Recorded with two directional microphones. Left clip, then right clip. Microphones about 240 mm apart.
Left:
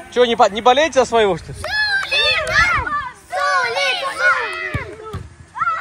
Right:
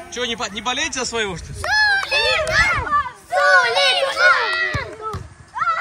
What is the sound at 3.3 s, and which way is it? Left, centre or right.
Child singing, right.